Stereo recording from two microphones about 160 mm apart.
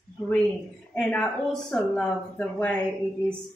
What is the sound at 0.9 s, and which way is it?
Speech, 5° left (ahead or behind).